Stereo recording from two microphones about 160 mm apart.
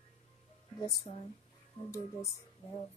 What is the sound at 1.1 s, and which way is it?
Speech, 40° left (ahead or behind).